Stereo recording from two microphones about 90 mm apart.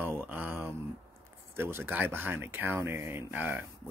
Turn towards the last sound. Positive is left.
turn(degrees=-20)  # may be behind; listen again after turning